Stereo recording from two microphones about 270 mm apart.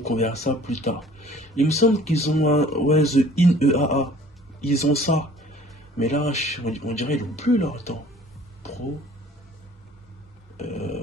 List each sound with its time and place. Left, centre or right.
0.0 s speech: left